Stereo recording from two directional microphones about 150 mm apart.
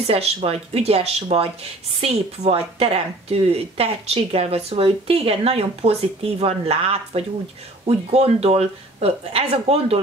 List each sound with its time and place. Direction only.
0.0 s a woman's voice: 40° right (ahead or behind)